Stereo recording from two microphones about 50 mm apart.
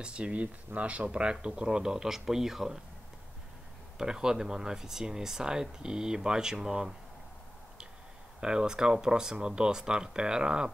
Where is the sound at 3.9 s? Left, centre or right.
Centre.